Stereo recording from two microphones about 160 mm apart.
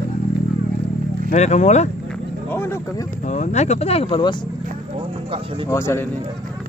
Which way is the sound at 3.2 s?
50° left (ahead or behind).